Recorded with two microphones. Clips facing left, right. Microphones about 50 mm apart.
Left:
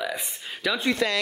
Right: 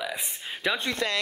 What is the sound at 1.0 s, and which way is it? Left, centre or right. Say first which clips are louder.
Speech: left 3 dB; left.